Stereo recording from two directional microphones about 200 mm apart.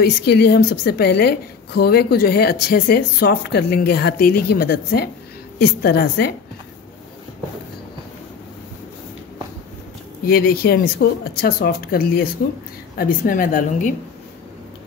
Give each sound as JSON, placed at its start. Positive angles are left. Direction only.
{"t": 0.0, "sound": "a woman's voice", "side_deg": 55}
{"t": 10.2, "sound": "a woman's voice", "side_deg": 50}